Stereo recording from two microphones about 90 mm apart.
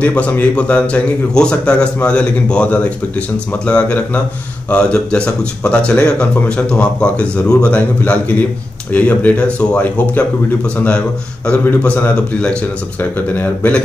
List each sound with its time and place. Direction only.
0.0 s speech: 15° left (ahead or behind)
11.4 s a man's voice: 15° left (ahead or behind)